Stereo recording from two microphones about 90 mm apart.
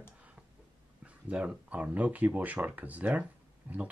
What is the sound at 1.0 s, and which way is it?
Speech, 15° right (ahead or behind).